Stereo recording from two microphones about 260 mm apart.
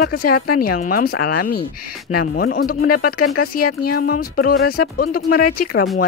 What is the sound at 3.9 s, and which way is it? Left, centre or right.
Speech, left.